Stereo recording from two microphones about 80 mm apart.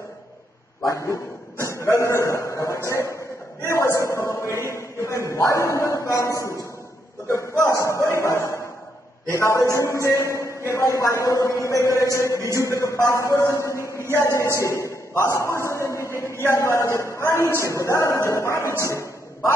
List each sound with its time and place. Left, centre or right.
0.8 s a man's voice: left
13.9 s speech: right
14.3 s a man's voice: left